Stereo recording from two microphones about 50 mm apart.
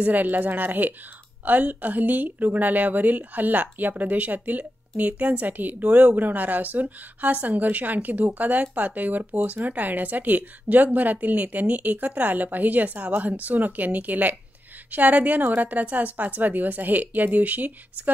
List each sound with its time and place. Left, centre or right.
0.0 s speech: right